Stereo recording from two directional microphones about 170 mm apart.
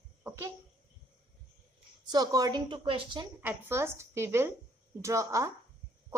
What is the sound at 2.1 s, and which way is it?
A woman's voice, 20° right (ahead or behind).